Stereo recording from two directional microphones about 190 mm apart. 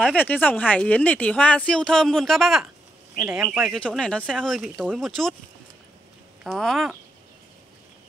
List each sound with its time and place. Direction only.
0.1 s speech: 10° left (ahead or behind)
6.4 s speech: centre (ahead or behind)